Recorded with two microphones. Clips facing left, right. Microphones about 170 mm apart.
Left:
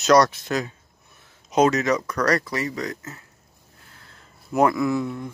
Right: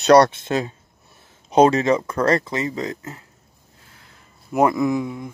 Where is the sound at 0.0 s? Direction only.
30° right (ahead or behind).